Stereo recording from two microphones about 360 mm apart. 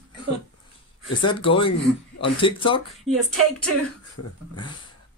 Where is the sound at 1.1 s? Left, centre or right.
Centre.